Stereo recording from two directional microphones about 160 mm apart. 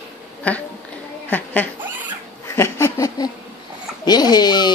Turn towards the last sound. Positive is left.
turn(degrees=25)  # may be behind; listen again after turning